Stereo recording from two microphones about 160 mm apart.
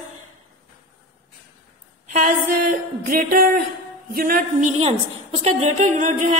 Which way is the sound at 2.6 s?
60° right (ahead or behind).